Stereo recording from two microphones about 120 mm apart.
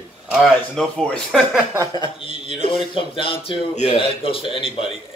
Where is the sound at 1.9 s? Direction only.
45° left (ahead or behind).